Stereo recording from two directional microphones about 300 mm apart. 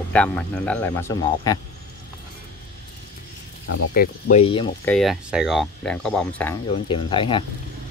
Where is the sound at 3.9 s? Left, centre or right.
Left.